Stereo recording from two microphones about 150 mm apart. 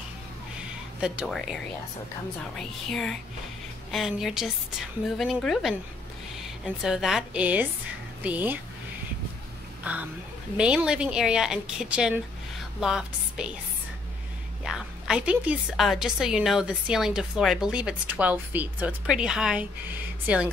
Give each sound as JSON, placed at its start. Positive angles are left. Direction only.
{"t": 1.0, "sound": "a woman's voice", "side_deg": -5}
{"t": 2.9, "sound": "a woman's voice", "side_deg": 5}
{"t": 9.9, "sound": "a woman's voice", "side_deg": -10}
{"t": 14.6, "sound": "a woman's voice", "side_deg": -5}